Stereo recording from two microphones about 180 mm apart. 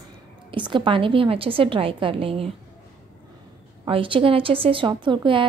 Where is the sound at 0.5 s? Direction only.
25° right (ahead or behind).